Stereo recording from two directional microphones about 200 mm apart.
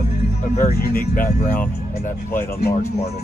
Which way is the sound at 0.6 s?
50° left (ahead or behind).